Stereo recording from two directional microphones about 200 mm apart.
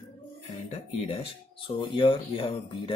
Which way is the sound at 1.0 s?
30° left (ahead or behind).